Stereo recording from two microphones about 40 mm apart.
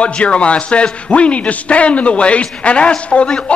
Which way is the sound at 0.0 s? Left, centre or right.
Left.